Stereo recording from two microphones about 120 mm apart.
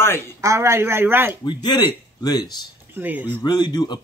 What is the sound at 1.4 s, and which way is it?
Speech, 40° left (ahead or behind).